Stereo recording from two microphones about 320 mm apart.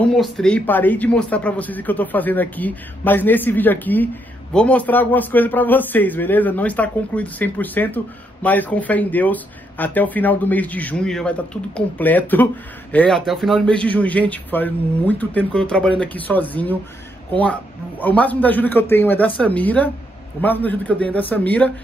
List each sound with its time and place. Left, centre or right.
0.0 s a man's voice: centre
18.0 s a man's voice: centre